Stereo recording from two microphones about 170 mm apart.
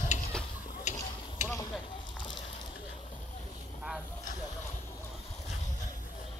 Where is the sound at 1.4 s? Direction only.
10° left (ahead or behind).